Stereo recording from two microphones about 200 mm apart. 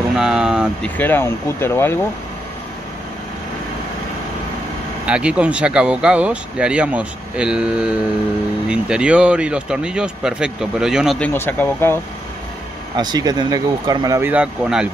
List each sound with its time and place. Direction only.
0.2 s vehicle: 5° right (ahead or behind)
0.8 s speech: 10° left (ahead or behind)
5.0 s speech: 5° right (ahead or behind)
11.2 s speech: 10° left (ahead or behind)
12.9 s speech: 20° right (ahead or behind)
14.3 s speech: 5° right (ahead or behind)